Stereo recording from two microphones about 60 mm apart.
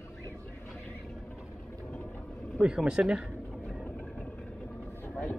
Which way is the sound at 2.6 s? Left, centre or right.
Centre.